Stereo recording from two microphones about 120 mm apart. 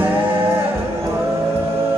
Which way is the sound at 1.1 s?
20° right (ahead or behind).